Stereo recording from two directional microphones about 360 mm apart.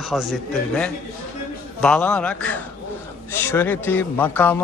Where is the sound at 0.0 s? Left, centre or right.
Centre.